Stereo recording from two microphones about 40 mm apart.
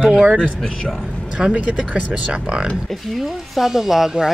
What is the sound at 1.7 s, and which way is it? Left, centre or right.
Speech, right.